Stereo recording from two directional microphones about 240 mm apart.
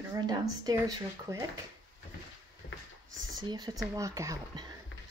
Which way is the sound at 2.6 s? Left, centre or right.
Left.